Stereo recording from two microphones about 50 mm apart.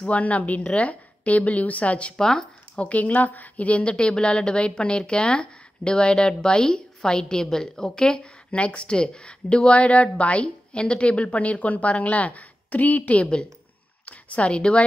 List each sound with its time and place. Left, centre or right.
0.0 s a woman's voice: left
2.1 s speech: centre
2.8 s a woman's voice: left
3.9 s a woman's voice: centre